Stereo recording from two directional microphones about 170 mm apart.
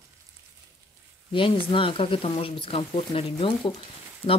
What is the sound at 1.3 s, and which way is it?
Speech, 30° left (ahead or behind).